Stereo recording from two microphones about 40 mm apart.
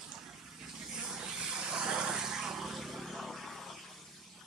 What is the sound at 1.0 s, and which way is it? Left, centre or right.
Vehicle, centre.